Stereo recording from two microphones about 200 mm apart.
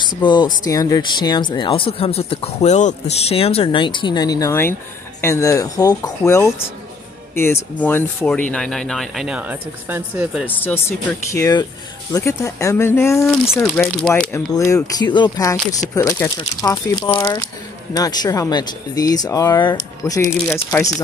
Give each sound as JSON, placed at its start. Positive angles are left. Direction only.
{"t": 0.2, "sound": "speech", "side_deg": 25}
{"t": 10.4, "sound": "speech", "side_deg": 10}
{"t": 14.5, "sound": "speech", "side_deg": 15}
{"t": 15.5, "sound": "speech", "side_deg": 5}
{"t": 15.9, "sound": "speech", "side_deg": 15}